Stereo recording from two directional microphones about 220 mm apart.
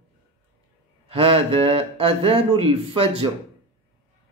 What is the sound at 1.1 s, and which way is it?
Speech, 25° right (ahead or behind).